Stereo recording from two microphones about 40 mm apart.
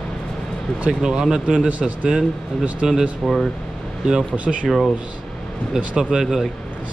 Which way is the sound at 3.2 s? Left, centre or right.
Centre.